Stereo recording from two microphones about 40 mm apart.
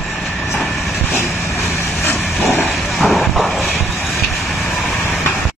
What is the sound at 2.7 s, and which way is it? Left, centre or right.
Vehicle, centre.